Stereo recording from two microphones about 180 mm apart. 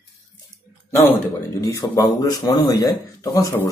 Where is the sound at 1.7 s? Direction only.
20° left (ahead or behind).